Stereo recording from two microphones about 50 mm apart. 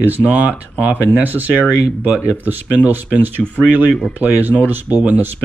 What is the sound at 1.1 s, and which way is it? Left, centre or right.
Speech, right.